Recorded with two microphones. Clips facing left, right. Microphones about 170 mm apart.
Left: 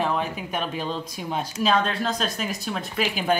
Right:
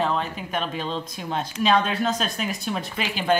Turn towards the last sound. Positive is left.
turn(degrees=5)  # may be behind; listen again after turning